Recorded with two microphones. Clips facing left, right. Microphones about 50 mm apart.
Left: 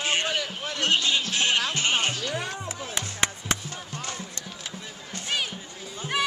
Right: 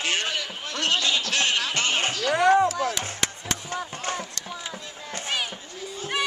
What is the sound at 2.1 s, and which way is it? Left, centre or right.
Music, right.